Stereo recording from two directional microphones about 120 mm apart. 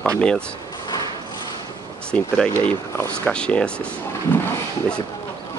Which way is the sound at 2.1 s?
10° left (ahead or behind).